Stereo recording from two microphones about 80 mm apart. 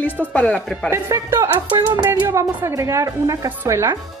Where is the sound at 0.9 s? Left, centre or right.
Right.